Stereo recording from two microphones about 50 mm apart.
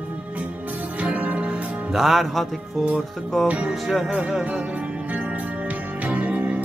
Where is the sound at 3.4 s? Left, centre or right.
Right.